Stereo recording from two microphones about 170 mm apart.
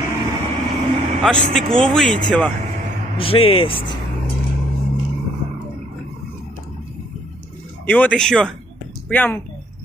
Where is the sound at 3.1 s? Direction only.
35° left (ahead or behind).